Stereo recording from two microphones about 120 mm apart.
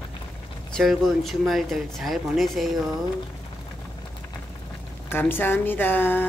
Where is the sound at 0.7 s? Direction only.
Centre (ahead or behind).